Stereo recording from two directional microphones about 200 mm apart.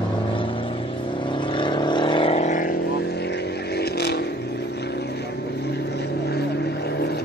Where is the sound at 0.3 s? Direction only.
25° left (ahead or behind).